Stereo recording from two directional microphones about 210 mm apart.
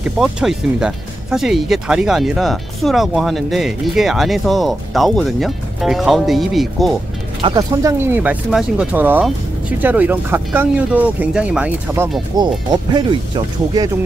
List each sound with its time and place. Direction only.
0.0 s speech: 5° right (ahead or behind)
7.4 s speech: 15° right (ahead or behind)